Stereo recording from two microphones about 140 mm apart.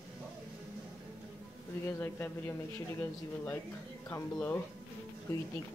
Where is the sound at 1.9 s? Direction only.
15° left (ahead or behind).